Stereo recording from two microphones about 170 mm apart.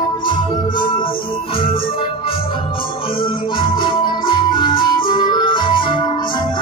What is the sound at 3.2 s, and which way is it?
Music, 30° left (ahead or behind).